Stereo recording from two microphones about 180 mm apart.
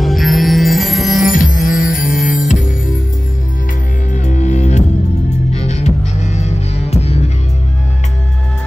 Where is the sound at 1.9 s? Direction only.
50° left (ahead or behind).